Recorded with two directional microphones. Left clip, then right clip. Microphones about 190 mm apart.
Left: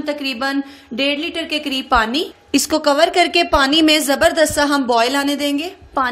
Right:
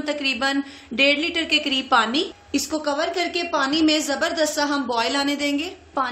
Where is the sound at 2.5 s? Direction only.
40° left (ahead or behind).